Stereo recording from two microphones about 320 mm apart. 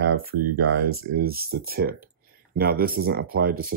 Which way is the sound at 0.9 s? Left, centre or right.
Right.